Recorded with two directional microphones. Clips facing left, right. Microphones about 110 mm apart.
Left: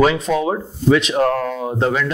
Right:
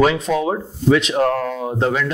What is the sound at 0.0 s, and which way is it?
Speech, 20° left (ahead or behind).